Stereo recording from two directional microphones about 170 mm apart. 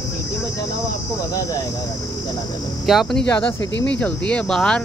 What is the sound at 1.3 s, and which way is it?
Speech, 20° left (ahead or behind).